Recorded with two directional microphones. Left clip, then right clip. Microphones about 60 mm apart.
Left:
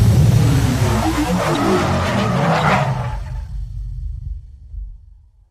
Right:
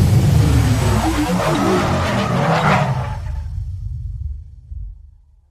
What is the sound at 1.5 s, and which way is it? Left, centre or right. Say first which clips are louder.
Vehicle: even; centre.